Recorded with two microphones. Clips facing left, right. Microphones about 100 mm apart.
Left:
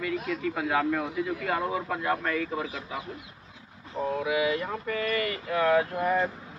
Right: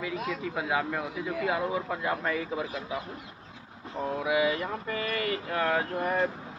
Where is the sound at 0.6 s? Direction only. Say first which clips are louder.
Left 3 dB; 10° right (ahead or behind).